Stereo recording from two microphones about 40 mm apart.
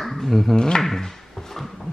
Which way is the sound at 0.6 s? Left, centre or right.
Centre.